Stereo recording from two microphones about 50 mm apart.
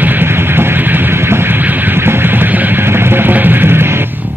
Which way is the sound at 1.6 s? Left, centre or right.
Right.